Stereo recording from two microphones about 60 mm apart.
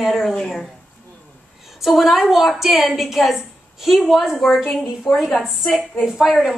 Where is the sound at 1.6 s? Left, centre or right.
Centre.